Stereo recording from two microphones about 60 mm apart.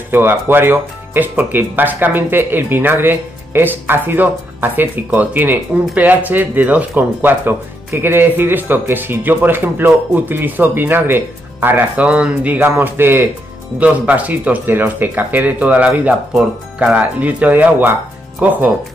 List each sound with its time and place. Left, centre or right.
0.1 s speech: right
12.1 s speech: right
12.5 s speech: right
13.7 s speech: right
16.9 s speech: right